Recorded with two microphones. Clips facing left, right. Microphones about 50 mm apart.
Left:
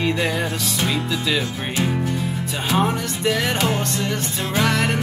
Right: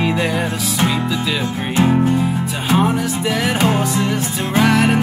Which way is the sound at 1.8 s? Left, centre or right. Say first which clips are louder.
Right 9 dB; right.